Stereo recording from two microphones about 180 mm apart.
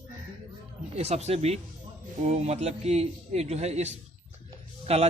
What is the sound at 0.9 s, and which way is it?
A man's voice, 35° right (ahead or behind).